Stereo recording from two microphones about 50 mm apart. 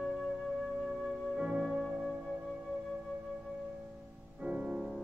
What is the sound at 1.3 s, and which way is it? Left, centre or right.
Music, centre.